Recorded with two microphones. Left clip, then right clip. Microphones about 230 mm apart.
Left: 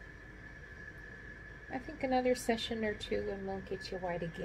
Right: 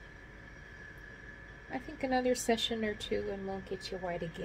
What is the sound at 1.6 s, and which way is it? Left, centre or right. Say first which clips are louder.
Speech: right 1 dB; centre.